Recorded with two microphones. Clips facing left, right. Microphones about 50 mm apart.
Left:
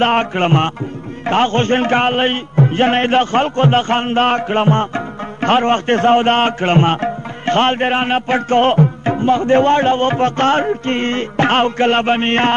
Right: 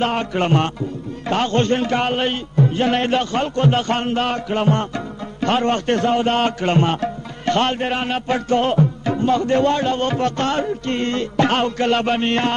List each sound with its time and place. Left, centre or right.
0.0 s a man's voice: left
9.1 s a man's voice: left